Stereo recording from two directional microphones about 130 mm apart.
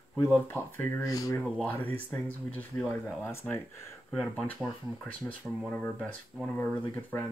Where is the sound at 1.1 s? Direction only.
25° left (ahead or behind).